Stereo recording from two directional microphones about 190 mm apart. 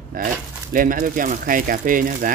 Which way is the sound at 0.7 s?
45° right (ahead or behind).